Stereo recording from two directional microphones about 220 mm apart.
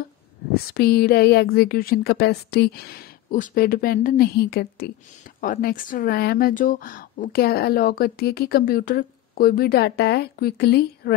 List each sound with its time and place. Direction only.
0.7 s speech: 45° left (ahead or behind)